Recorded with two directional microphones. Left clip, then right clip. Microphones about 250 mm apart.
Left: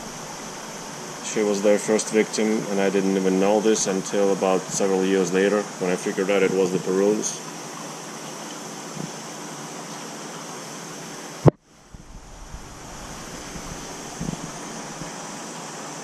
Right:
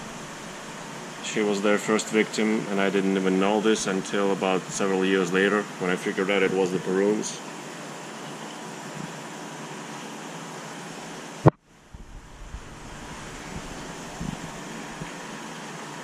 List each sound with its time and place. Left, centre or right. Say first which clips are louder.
1.4 s speech: left 4 dB; centre
2.0 s speech: left 3 dB; centre
2.4 s speech: left 2 dB; centre